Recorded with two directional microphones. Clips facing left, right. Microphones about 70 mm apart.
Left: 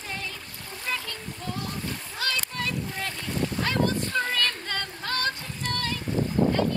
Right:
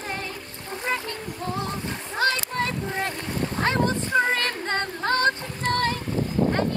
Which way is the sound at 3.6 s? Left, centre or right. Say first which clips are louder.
Right 4 dB; right.